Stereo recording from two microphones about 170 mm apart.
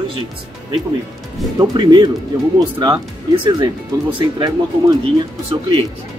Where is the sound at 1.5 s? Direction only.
25° right (ahead or behind).